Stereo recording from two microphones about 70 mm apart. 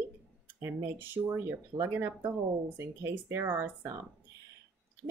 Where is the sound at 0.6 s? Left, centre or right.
Right.